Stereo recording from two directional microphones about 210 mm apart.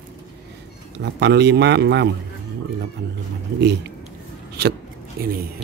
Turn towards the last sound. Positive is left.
turn(degrees=-45)  # may be behind; listen again after turning